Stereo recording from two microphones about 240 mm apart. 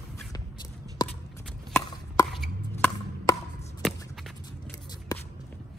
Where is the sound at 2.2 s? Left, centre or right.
Centre.